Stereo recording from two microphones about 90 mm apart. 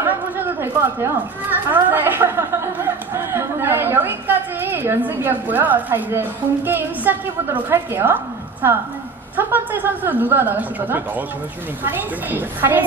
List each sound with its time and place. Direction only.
0.0 s a woman's voice: 25° right (ahead or behind)